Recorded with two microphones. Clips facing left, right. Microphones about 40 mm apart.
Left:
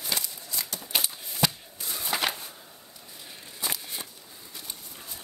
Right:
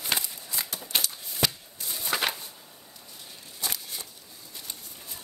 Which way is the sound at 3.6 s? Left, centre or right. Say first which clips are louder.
Left 1 dB; centre.